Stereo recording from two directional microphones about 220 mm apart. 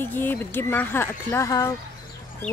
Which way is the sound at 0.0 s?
10° left (ahead or behind).